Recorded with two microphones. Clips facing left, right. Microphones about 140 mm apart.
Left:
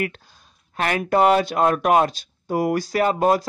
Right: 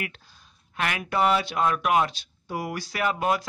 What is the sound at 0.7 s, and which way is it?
A man's voice, 40° left (ahead or behind).